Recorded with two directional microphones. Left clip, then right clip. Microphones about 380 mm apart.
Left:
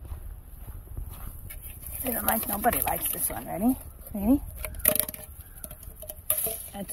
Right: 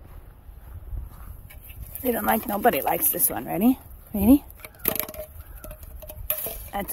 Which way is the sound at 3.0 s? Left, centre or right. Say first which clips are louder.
Right 6 dB; right.